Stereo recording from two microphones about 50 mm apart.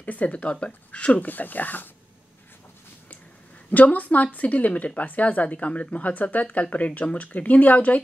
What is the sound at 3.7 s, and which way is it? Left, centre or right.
Speech, left.